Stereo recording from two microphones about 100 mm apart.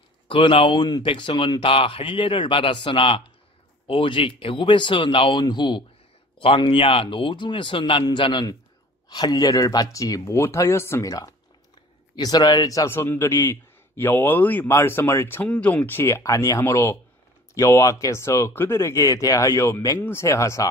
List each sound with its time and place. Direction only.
0.3 s speech: 60° left (ahead or behind)
5.4 s speech: 45° left (ahead or behind)
6.4 s speech: 65° left (ahead or behind)
9.1 s speech: 40° left (ahead or behind)
12.9 s speech: 20° left (ahead or behind)